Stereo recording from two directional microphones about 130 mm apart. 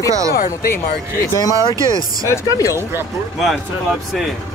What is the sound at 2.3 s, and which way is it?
Speech, 25° left (ahead or behind).